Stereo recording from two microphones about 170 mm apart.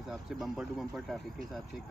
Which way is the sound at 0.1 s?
Centre (ahead or behind).